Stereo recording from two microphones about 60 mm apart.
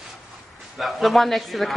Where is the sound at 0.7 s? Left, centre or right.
Centre.